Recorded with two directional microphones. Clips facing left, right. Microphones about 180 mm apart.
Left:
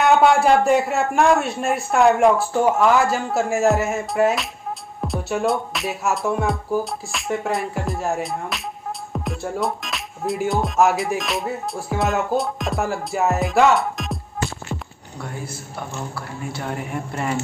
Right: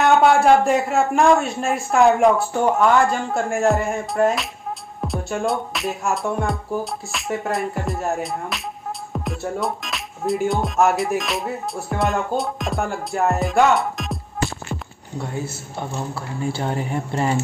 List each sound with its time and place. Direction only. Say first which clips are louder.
0.0 s music: even; centre (ahead or behind)
15.1 s a man's voice: right 4 dB; 25° right (ahead or behind)